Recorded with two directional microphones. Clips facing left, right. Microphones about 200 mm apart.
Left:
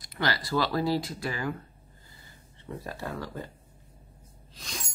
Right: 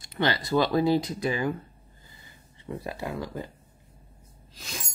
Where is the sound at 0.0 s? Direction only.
25° right (ahead or behind).